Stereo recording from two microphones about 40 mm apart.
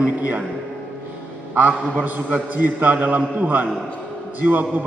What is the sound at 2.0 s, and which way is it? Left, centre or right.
A man's voice, right.